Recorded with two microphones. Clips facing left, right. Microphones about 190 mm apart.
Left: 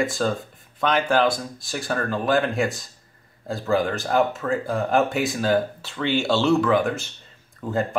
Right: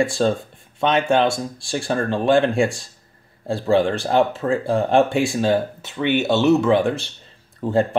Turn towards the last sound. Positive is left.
turn(degrees=-30)  # may be behind; listen again after turning